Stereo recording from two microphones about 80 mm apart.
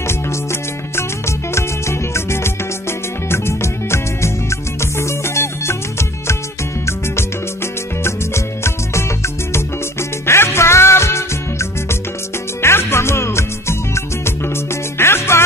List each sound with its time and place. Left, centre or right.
0.0 s music: left
8.0 s music: left